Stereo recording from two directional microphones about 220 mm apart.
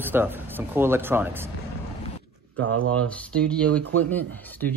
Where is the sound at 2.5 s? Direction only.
65° right (ahead or behind).